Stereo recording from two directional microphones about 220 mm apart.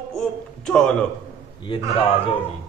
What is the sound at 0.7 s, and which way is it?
Speech, 5° left (ahead or behind).